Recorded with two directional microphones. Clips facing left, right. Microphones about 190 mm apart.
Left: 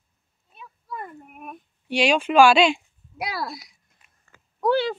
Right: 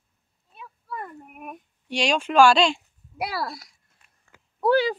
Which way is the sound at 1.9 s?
5° left (ahead or behind).